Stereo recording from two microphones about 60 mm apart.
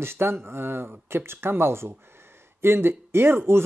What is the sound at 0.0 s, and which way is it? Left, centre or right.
Speech, right.